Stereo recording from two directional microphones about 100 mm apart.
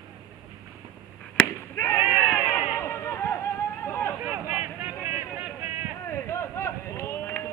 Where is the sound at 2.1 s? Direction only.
25° left (ahead or behind).